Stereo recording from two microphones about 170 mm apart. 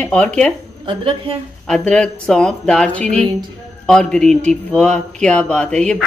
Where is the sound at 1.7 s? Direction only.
5° left (ahead or behind).